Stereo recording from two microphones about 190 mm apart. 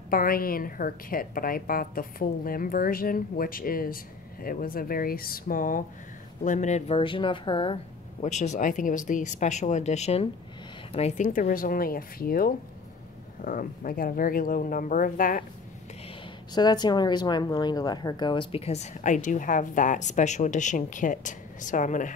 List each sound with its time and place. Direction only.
0.1 s a woman's voice: 50° left (ahead or behind); by 7.8 s 30° left (ahead or behind)
8.2 s a woman's voice: 40° left (ahead or behind)
16.5 s speech: 20° left (ahead or behind); by 22.1 s 40° left (ahead or behind)